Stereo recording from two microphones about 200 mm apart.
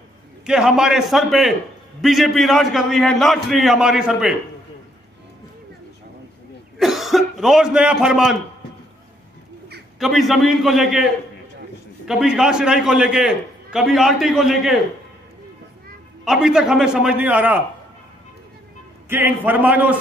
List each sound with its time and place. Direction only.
0.5 s a man's voice: 5° right (ahead or behind)
6.8 s cough: centre (ahead or behind)
9.9 s a man's voice: centre (ahead or behind)
12.1 s a man's voice: 5° right (ahead or behind)
16.3 s a man's voice: 5° right (ahead or behind)
19.0 s a man's voice: 10° right (ahead or behind)